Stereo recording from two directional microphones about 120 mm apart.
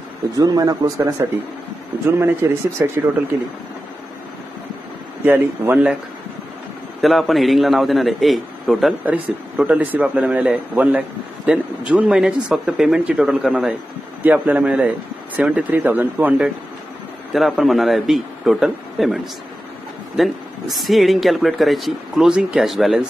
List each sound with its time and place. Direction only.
0.4 s speech: 30° right (ahead or behind); by 2.9 s 15° right (ahead or behind)
5.2 s speech: 15° right (ahead or behind)
7.0 s speech: centre (ahead or behind)
9.6 s speech: 10° right (ahead or behind)
17.3 s speech: centre (ahead or behind)
20.2 s speech: centre (ahead or behind)